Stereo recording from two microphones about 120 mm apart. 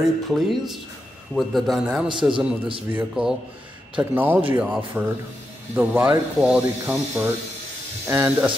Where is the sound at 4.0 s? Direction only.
15° right (ahead or behind).